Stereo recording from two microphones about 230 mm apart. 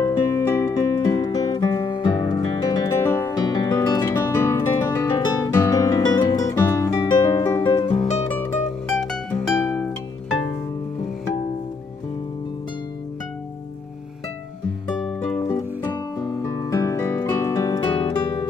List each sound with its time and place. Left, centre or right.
0.0 s music: centre
8.8 s music: centre
15.3 s music: centre